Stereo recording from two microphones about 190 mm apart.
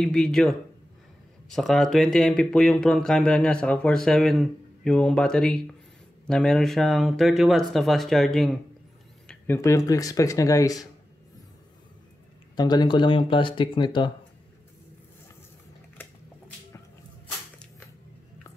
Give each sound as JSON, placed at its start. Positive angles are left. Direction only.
{"t": 0.0, "sound": "speech", "side_deg": 5}
{"t": 9.3, "sound": "speech", "side_deg": 15}
{"t": 12.5, "sound": "speech", "side_deg": 20}